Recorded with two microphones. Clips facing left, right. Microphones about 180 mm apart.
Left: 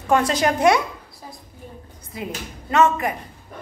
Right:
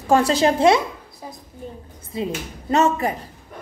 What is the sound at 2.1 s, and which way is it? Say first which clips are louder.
A woman's voice: right 5 dB; 25° right (ahead or behind).